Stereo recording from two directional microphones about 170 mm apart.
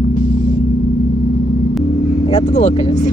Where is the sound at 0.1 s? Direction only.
55° left (ahead or behind).